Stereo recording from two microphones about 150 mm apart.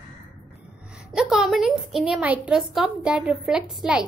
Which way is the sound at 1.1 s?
Centre (ahead or behind).